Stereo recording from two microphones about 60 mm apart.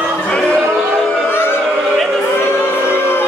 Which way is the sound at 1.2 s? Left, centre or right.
Left.